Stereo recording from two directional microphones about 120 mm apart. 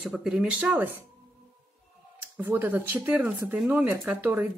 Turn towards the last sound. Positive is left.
turn(degrees=-15)  # may be behind; listen again after turning